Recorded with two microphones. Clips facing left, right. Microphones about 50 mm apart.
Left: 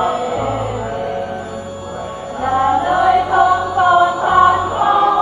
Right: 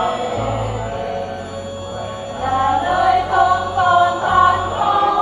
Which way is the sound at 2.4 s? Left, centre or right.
Left.